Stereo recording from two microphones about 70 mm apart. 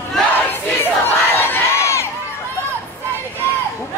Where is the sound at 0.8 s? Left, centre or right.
Left.